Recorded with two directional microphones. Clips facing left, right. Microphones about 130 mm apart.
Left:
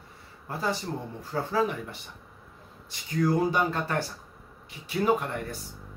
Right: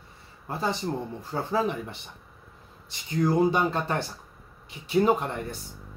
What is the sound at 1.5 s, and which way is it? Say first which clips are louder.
Speech: right 1 dB; 25° right (ahead or behind).